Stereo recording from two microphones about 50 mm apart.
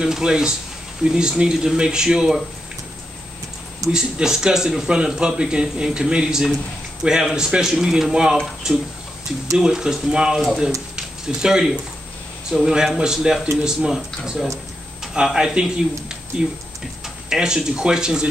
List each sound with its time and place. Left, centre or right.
0.0 s speech: centre
3.9 s speech: centre